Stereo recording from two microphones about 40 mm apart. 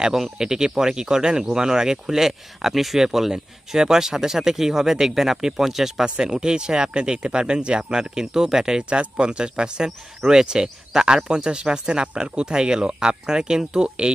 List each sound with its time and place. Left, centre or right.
0.0 s speech: centre
6.0 s speech: right
8.8 s speech: right; by 14.2 s centre